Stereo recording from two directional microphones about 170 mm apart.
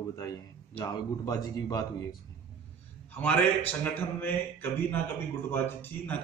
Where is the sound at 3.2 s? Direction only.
10° left (ahead or behind).